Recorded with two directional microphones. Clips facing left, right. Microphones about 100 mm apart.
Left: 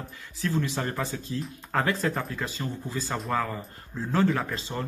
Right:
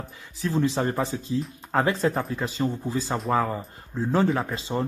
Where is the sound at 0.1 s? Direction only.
20° right (ahead or behind).